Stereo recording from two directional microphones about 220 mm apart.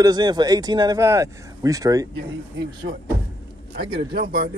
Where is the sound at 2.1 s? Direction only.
50° right (ahead or behind).